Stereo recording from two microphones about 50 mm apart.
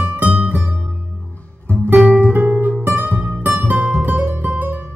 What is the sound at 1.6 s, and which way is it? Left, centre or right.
Music, left.